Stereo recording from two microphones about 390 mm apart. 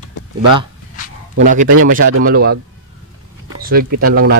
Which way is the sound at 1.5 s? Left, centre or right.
Right.